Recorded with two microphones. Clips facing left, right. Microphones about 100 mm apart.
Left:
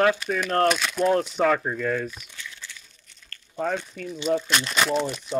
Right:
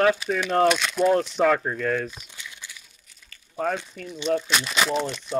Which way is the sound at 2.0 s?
30° right (ahead or behind).